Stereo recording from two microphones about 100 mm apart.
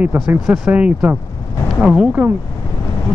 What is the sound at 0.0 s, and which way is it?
Speech, 20° right (ahead or behind).